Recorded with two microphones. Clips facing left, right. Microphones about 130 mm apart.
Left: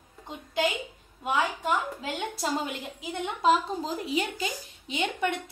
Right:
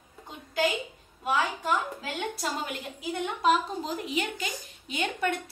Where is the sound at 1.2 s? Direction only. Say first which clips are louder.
Left 1 dB; 15° left (ahead or behind).